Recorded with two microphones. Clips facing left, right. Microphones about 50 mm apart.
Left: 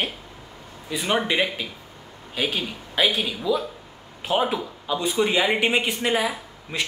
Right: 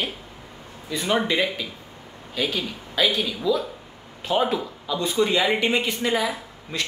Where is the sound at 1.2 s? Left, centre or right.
Centre.